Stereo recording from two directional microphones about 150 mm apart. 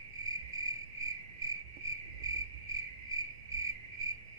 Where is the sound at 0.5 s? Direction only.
25° right (ahead or behind).